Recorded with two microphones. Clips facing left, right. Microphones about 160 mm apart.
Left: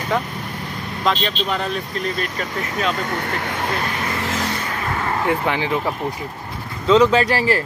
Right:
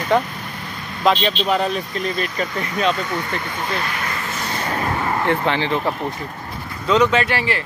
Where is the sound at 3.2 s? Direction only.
75° left (ahead or behind).